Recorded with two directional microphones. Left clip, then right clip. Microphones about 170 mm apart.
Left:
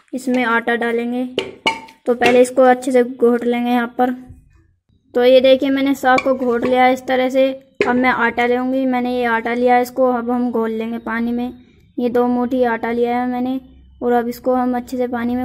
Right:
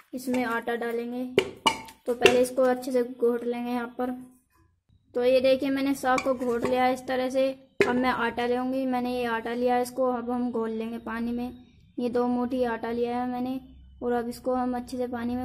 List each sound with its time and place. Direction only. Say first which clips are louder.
0.4 s a woman's voice: left 12 dB; 25° left (ahead or behind)